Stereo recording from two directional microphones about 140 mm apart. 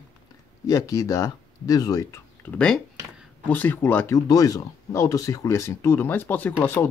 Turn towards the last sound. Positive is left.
turn(degrees=15)  # may be behind; listen again after turning